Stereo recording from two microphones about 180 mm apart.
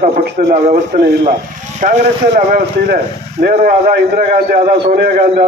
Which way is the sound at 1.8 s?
50° right (ahead or behind).